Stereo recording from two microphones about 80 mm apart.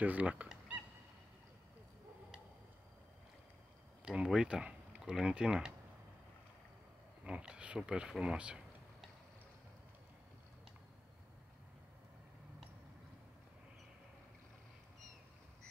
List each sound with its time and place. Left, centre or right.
0.0 s goose: centre
4.0 s speech: centre
7.2 s speech: centre